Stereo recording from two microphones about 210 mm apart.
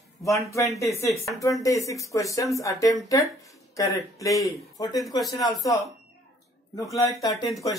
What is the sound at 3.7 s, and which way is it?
Speech, 15° left (ahead or behind).